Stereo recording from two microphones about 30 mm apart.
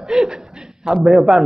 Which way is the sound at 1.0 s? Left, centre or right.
Centre.